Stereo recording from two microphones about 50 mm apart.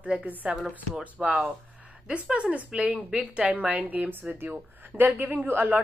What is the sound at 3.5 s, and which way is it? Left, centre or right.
A woman's voice, right.